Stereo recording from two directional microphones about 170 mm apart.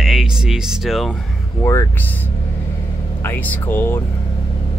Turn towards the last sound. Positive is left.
turn(degrees=15)  # may be behind; listen again after turning